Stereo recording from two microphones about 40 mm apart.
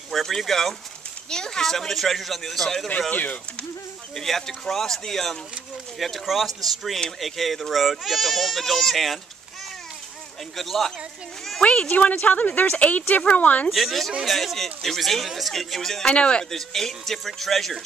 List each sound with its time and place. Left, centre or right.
0.1 s speech: centre
1.3 s speech: centre
3.1 s speech: left
4.1 s speech: centre
10.5 s speech: centre
11.6 s speech: left
13.7 s speech: centre
16.1 s speech: left
16.4 s speech: centre